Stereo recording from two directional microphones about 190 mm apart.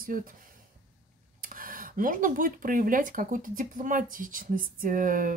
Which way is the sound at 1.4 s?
45° right (ahead or behind).